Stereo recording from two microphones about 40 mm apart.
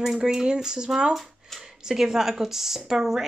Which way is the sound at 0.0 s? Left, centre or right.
Centre.